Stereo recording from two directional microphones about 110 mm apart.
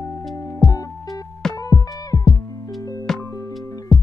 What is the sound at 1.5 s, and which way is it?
Music, 35° left (ahead or behind).